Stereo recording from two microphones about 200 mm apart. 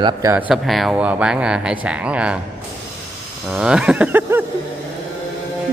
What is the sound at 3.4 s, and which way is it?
Speech, 5° right (ahead or behind).